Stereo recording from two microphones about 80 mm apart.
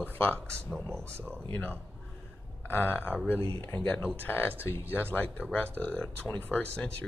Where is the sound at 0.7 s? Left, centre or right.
Centre.